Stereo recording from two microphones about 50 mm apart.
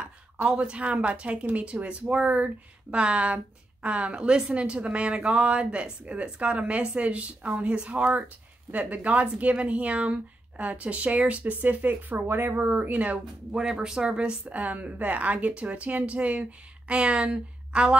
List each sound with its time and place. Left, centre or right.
0.5 s speech: right
13.5 s speech: centre